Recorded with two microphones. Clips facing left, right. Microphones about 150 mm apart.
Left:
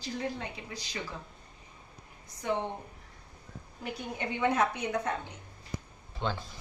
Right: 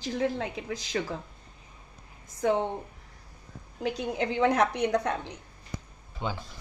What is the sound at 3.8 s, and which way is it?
A woman's voice, 90° right.